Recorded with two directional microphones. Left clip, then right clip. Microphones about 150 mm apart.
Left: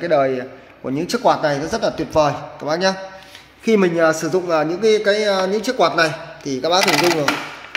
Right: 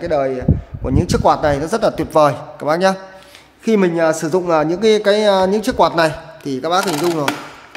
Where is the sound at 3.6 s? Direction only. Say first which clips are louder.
Even; 15° right (ahead or behind); by 6.2 s 55° right (ahead or behind).